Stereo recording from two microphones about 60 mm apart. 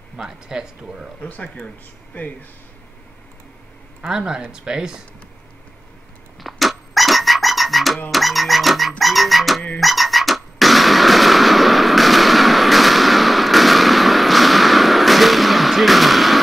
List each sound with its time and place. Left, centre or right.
0.2 s speech: centre
1.2 s speech: left
4.1 s speech: centre
6.4 s frog: centre
9.8 s a sound: centre